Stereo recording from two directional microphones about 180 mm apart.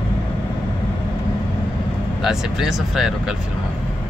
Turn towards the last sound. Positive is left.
turn(degrees=0)  # may be behind; listen again after turning